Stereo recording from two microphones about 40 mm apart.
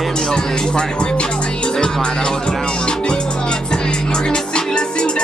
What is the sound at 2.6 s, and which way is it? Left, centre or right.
Music, left.